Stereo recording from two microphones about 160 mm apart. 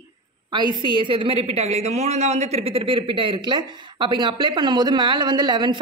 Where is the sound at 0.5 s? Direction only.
30° right (ahead or behind).